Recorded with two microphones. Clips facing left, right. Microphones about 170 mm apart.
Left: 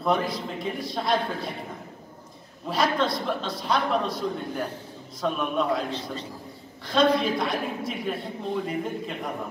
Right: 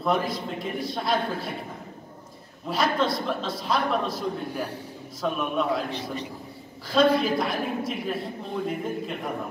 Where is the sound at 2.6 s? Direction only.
Centre (ahead or behind).